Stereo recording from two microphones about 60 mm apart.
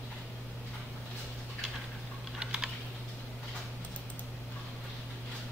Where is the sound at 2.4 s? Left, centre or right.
Centre.